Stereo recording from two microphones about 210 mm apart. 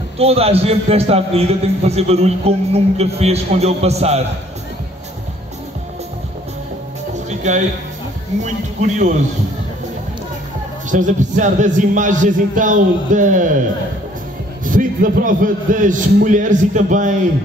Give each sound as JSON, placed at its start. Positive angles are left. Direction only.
{"t": 0.2, "sound": "a man's voice", "side_deg": -30}
{"t": 7.2, "sound": "music", "side_deg": -35}
{"t": 8.4, "sound": "a man's voice", "side_deg": -35}
{"t": 10.9, "sound": "a man's voice", "side_deg": -35}
{"t": 14.6, "sound": "a man's voice", "side_deg": -40}